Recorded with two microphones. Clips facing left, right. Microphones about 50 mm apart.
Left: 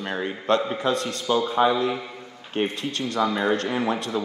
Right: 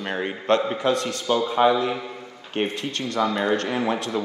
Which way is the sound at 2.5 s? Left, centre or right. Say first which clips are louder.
Even; right.